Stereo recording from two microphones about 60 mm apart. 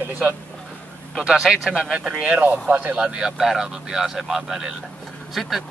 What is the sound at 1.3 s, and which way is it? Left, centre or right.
Speech, centre.